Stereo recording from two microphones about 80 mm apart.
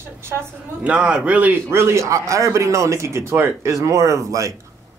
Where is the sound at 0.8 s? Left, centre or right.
Centre.